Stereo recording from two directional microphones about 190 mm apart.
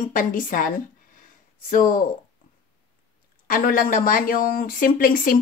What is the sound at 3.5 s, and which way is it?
Speech, 50° left (ahead or behind).